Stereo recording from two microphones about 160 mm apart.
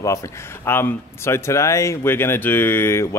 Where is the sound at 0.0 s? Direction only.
20° left (ahead or behind).